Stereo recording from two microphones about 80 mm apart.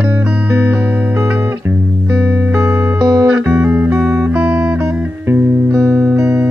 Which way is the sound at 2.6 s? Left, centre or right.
Right.